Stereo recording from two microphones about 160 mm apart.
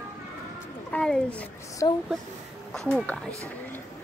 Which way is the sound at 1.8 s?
25° left (ahead or behind).